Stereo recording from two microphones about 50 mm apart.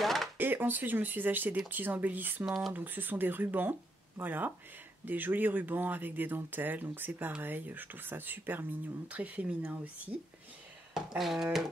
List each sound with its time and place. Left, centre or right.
0.0 s a sound: centre
0.4 s speech: right
2.4 s speech: centre
2.7 s speech: right
9.0 s speech: right
11.0 s speech: centre